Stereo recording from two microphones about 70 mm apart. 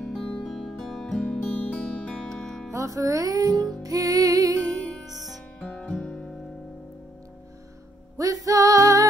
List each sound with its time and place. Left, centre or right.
0.0 s music: centre
2.7 s music: right
5.6 s music: centre
8.2 s music: right